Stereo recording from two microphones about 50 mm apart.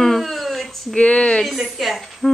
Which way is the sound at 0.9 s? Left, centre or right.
Centre.